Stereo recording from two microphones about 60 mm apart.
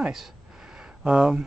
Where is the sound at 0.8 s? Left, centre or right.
Centre.